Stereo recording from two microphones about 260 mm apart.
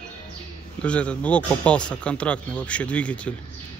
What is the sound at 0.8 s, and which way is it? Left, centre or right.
Speech, centre.